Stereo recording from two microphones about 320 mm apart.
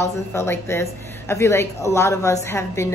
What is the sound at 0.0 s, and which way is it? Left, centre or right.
Speech, centre.